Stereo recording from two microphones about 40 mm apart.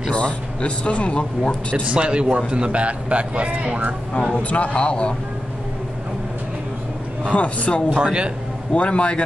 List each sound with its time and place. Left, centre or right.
0.1 s a man's voice: left
1.9 s a man's voice: right
4.4 s a man's voice: left
7.3 s a man's voice: left
8.0 s speech: right
8.7 s a man's voice: left